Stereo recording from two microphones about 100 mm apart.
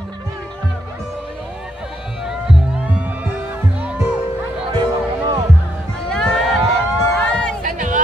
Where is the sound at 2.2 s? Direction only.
5° right (ahead or behind).